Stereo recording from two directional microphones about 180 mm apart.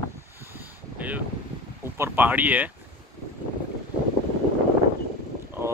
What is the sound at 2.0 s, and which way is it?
Speech, 10° right (ahead or behind).